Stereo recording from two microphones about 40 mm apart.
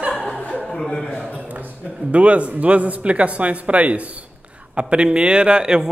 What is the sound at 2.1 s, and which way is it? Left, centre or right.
Speech, right.